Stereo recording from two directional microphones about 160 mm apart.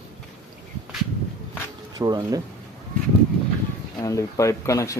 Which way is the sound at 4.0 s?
20° left (ahead or behind).